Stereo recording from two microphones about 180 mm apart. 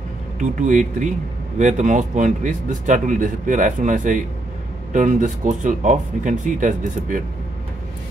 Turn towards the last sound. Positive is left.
turn(degrees=-45)  # may be behind; listen again after turning